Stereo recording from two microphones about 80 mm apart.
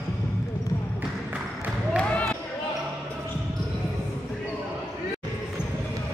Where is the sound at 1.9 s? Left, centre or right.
Centre.